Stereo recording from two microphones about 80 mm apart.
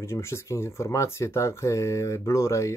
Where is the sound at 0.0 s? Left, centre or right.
Left.